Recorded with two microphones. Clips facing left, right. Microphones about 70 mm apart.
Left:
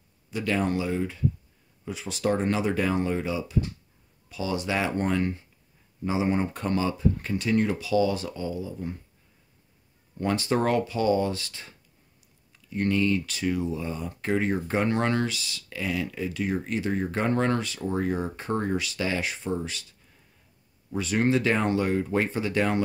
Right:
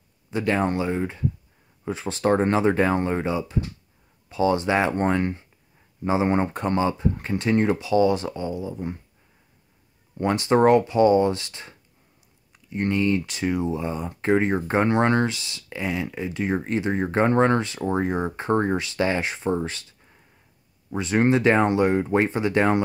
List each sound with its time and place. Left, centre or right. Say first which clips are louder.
0.3 s speech: right 4 dB; right
6.5 s speech: right 4 dB; right
10.1 s speech: right 5 dB; right